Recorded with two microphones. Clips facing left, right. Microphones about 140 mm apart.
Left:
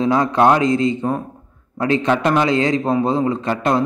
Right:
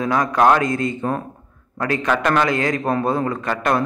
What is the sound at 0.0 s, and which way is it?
A man's voice, 25° left (ahead or behind).